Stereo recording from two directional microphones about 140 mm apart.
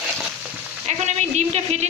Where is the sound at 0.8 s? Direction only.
50° right (ahead or behind).